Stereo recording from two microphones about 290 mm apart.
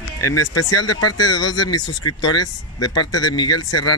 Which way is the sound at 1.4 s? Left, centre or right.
Centre.